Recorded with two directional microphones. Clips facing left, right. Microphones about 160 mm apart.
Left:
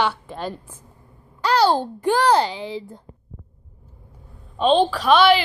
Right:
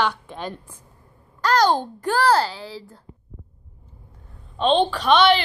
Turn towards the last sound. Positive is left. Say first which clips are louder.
# left 1 dB
turn(degrees=5)  # may be behind; listen again after turning